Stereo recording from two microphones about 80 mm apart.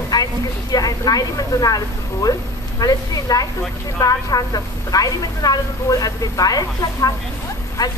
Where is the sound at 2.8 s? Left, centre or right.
Left.